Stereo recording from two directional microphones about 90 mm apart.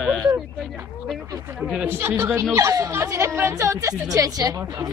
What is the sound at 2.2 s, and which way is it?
A woman's voice, 30° right (ahead or behind).